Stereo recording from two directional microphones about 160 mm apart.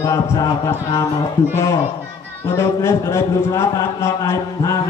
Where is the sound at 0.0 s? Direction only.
20° left (ahead or behind).